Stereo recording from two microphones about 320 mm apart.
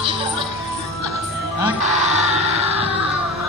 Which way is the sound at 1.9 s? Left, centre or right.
Right.